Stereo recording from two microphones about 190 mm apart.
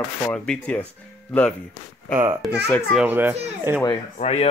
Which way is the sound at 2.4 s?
Centre (ahead or behind).